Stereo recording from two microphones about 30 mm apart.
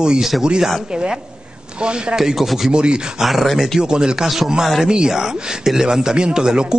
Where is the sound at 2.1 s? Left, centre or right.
Centre.